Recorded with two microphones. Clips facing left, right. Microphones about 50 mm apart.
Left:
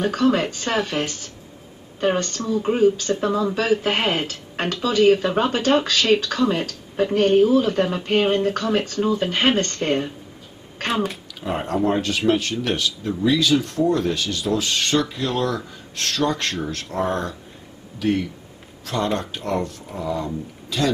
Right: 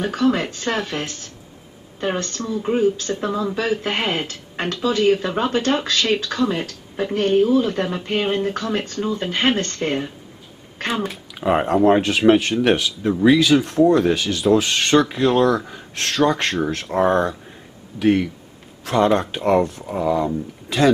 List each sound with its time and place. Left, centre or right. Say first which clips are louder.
0.0 s speech: even; centre
11.4 s speech: right 6 dB; right
12.4 s speech: right 6 dB; right
13.2 s speech: right 4 dB; right
13.6 s speech: right 5 dB; centre
13.8 s speech: right 5 dB; right
19.3 s speech: right 7 dB; right